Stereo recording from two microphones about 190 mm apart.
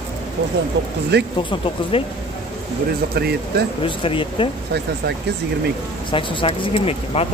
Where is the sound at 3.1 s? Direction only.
55° right (ahead or behind).